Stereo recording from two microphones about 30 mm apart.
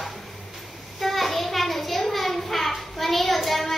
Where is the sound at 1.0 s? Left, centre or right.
Centre.